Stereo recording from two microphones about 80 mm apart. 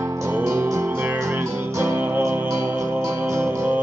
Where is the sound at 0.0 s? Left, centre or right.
Right.